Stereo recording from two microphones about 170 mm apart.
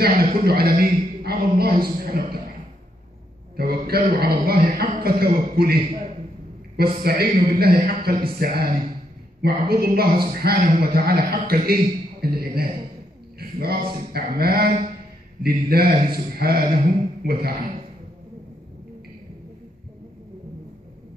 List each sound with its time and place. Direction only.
0.0 s a man's voice: 60° right (ahead or behind)
3.5 s a man's voice: 65° right (ahead or behind)
6.8 s a man's voice: 65° right (ahead or behind)